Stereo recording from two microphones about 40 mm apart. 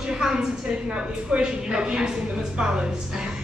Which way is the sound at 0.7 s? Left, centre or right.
Right.